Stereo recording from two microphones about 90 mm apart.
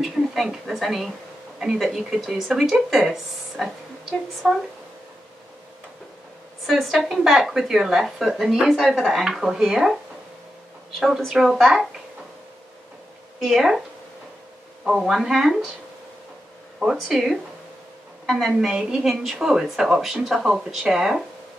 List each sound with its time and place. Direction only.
0.0 s speech: 5° right (ahead or behind)
6.6 s speech: centre (ahead or behind)
11.0 s speech: centre (ahead or behind)
13.4 s speech: 5° right (ahead or behind)
14.9 s speech: 5° right (ahead or behind)
16.8 s speech: 5° right (ahead or behind)